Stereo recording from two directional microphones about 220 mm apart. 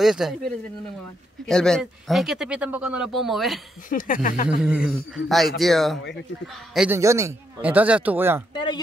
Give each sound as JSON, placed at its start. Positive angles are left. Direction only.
{"t": 0.0, "sound": "speech", "side_deg": 0}
{"t": 1.5, "sound": "speech", "side_deg": 5}
{"t": 3.9, "sound": "speech", "side_deg": 35}
{"t": 4.6, "sound": "speech", "side_deg": -5}
{"t": 7.0, "sound": "speech", "side_deg": -15}